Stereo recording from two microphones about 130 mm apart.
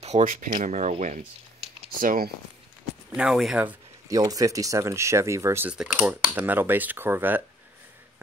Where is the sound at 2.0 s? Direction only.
90° right.